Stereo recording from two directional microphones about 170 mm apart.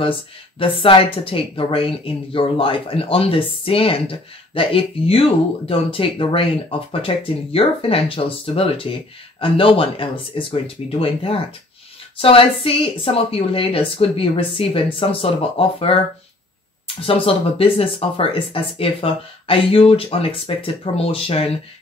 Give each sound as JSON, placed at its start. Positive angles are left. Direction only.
{"t": 0.0, "sound": "speech", "side_deg": 30}